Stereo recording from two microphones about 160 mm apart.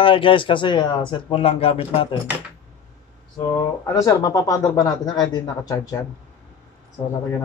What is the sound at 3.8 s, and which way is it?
Speech, 20° left (ahead or behind).